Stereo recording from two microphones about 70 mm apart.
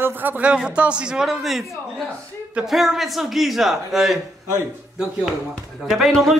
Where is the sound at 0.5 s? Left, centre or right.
Centre.